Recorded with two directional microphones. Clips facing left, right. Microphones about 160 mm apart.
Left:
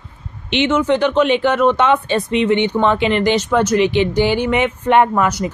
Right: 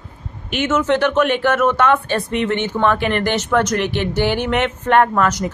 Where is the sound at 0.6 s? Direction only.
15° left (ahead or behind).